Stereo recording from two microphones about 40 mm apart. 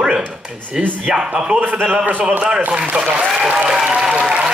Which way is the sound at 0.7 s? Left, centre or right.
Centre.